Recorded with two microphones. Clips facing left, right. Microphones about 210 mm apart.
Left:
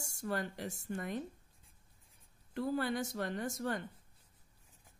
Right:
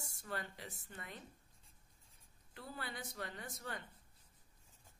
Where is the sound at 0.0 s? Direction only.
45° left (ahead or behind).